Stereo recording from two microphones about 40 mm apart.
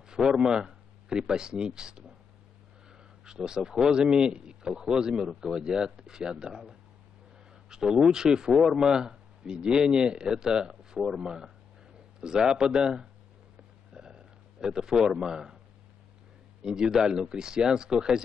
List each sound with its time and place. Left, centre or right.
0.3 s speech: centre
3.3 s speech: centre
7.7 s speech: centre
13.9 s a sound: centre
16.6 s speech: centre